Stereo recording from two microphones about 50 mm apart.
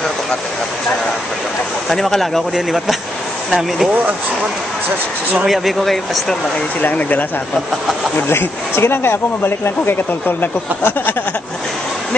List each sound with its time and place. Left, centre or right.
1.9 s speech: centre
2.5 s speech: centre
5.5 s speech: centre
6.8 s speech: left
8.2 s speech: left